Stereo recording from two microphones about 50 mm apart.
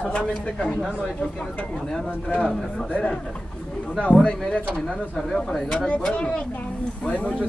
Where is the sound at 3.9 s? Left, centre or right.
Left.